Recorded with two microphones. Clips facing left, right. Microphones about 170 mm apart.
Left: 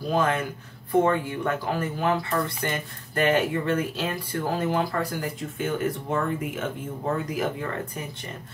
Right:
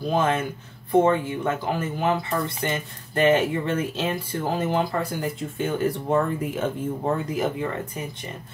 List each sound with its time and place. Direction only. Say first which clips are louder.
0.1 s speech: right 1 dB; 25° right (ahead or behind)
7.2 s speech: right 3 dB; 20° right (ahead or behind)